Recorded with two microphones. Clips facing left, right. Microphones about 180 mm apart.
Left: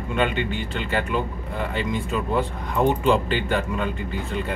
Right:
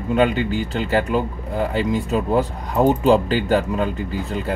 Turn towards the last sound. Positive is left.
turn(degrees=-40)  # may be behind; listen again after turning